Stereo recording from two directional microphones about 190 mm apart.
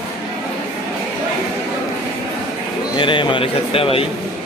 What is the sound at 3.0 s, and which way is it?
Speech, 25° left (ahead or behind).